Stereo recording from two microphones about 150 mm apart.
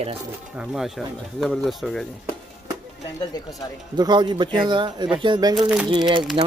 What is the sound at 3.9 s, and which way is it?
Speech, 30° right (ahead or behind).